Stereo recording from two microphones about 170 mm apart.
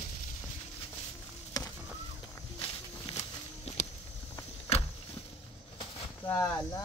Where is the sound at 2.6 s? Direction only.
35° left (ahead or behind).